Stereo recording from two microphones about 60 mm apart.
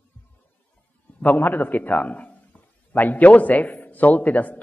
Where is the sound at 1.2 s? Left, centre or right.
Left.